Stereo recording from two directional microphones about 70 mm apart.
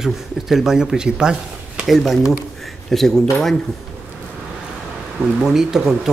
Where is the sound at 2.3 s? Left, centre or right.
Centre.